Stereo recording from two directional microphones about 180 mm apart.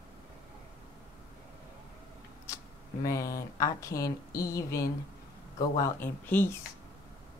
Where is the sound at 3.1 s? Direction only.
15° left (ahead or behind).